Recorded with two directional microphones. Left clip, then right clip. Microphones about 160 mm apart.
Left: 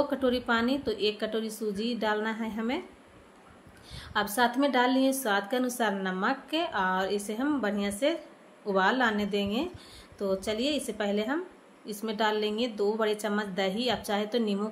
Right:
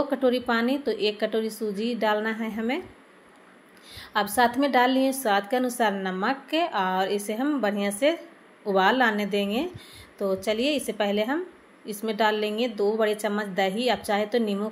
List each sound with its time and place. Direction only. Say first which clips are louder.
0.1 s a woman's voice: right 4 dB; 10° right (ahead or behind)
3.9 s a woman's voice: right 5 dB; 10° right (ahead or behind)